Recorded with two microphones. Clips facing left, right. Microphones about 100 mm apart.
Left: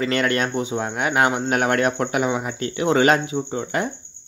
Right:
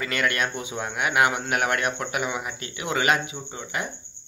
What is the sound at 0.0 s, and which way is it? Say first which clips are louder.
A man's voice: left 5 dB; 30° left (ahead or behind).